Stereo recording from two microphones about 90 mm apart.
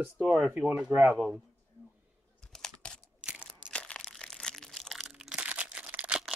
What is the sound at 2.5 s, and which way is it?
Computer keyboard, 5° left (ahead or behind).